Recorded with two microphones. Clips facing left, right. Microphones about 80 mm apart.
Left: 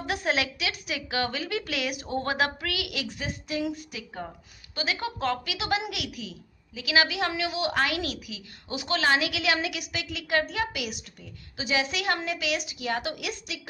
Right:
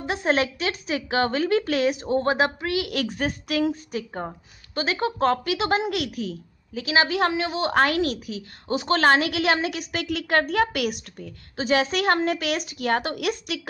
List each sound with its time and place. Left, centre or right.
0.0 s a sound: right
0.3 s a woman's voice: right
2.9 s a woman's voice: right
3.6 s a woman's voice: right
10.0 s a woman's voice: right